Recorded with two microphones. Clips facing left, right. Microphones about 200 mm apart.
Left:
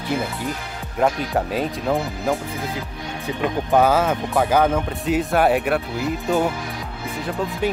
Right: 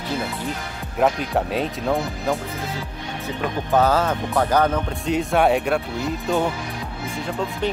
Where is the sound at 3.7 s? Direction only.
10° left (ahead or behind).